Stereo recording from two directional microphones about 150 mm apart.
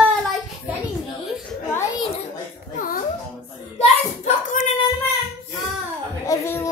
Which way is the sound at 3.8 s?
50° left (ahead or behind).